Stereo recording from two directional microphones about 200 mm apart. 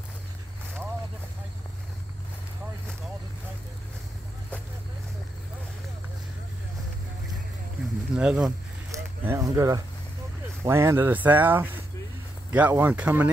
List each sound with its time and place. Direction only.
8.2 s speech: 5° right (ahead or behind)
8.5 s a sound: 15° right (ahead or behind)
10.6 s speech: 15° right (ahead or behind)